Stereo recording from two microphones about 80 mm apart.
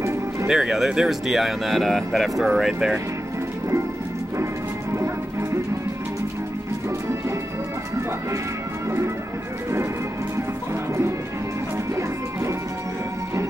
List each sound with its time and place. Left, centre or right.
0.0 s music: right
0.5 s speech: centre
4.9 s music: right
11.9 s music: right